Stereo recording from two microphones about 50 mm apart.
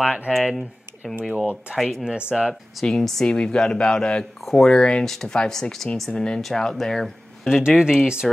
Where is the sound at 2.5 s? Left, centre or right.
Centre.